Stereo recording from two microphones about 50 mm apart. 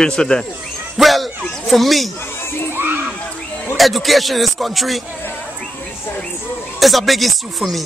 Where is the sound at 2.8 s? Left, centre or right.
Right.